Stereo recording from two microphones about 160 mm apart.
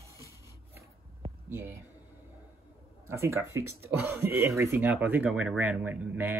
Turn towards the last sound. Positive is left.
turn(degrees=-10)  # may be behind; listen again after turning